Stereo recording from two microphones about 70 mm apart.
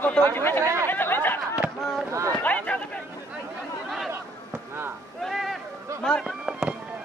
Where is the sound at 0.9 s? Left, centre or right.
Left.